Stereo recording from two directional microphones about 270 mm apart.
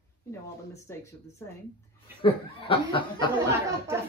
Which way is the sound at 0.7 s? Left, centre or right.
Centre.